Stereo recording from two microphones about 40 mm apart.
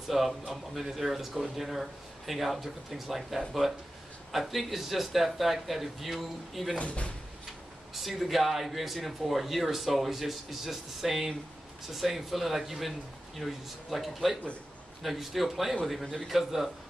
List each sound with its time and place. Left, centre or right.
0.1 s speech: centre
6.8 s speech: left
7.9 s speech: centre